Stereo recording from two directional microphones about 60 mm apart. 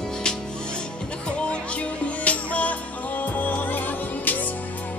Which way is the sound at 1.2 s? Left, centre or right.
Centre.